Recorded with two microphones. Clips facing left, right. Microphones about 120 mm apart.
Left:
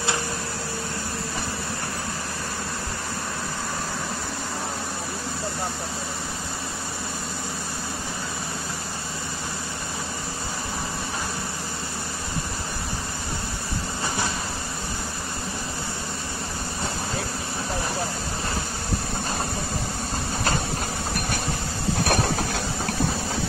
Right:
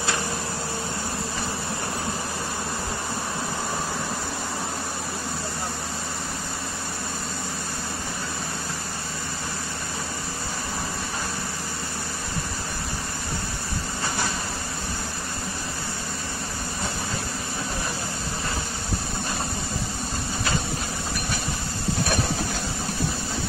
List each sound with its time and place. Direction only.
22.0 s vehicle: 60° left (ahead or behind)